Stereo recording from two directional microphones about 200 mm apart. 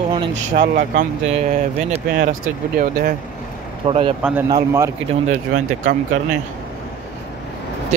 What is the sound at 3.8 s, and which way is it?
Speech, 30° right (ahead or behind).